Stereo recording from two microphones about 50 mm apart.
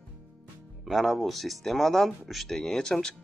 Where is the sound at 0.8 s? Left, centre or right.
Centre.